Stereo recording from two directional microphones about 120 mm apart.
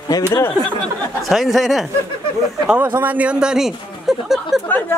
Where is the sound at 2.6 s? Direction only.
15° right (ahead or behind).